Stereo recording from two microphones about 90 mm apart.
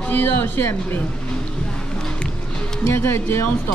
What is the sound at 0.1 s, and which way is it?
Speech, 25° left (ahead or behind).